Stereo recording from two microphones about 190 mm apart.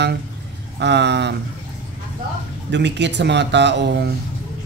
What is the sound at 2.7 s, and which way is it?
Speech, 65° right (ahead or behind).